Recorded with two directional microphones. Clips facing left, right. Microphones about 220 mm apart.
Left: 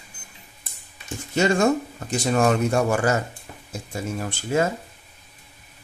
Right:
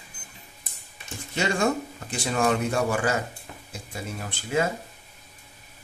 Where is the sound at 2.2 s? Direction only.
45° left (ahead or behind).